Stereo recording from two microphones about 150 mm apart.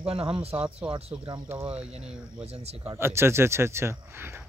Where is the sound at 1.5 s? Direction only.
10° right (ahead or behind).